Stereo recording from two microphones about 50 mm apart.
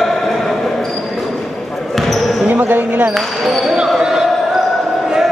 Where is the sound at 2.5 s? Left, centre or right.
Right.